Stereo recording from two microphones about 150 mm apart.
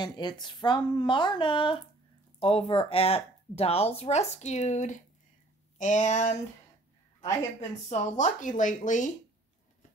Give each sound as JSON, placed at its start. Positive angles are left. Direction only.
{"t": 0.0, "sound": "speech", "side_deg": 30}
{"t": 7.9, "sound": "speech", "side_deg": 55}